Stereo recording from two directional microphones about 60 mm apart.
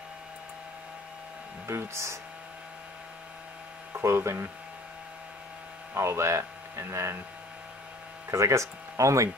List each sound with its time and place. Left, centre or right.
1.7 s speech: right
4.0 s speech: right
5.9 s speech: right
8.3 s speech: right